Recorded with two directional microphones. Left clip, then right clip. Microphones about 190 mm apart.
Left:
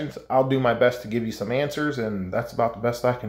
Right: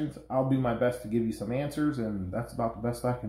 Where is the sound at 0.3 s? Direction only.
20° left (ahead or behind).